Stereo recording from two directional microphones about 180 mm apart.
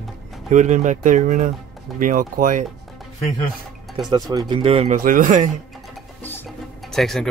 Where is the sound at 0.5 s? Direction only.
45° right (ahead or behind).